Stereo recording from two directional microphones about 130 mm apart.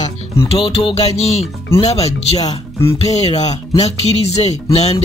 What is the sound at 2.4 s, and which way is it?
Speech, 20° left (ahead or behind).